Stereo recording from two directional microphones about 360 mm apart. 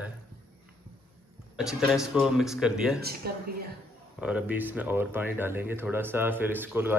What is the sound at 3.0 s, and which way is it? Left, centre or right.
Speech, right.